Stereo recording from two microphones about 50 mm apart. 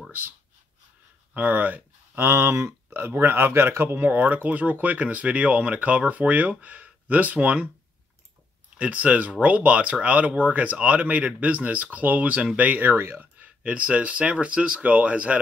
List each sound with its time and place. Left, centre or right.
1.3 s speech: right
2.1 s speech: right
3.1 s speech: right
8.7 s speech: right
12.9 s speech: right
13.6 s speech: right